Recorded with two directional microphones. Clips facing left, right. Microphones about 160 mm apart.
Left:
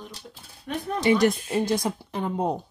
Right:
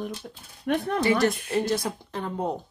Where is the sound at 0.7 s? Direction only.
65° right (ahead or behind).